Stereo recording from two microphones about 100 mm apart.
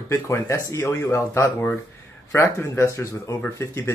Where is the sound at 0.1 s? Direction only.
30° left (ahead or behind).